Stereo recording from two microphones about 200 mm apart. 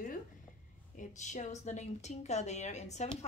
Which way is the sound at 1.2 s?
35° left (ahead or behind).